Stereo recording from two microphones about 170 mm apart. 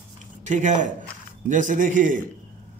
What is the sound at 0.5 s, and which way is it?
A man's voice, 45° right (ahead or behind).